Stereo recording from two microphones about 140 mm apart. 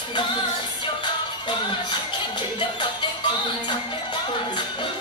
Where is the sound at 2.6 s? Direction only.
35° left (ahead or behind).